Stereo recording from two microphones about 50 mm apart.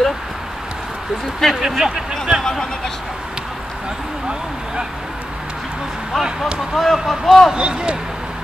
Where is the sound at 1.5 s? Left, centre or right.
Centre.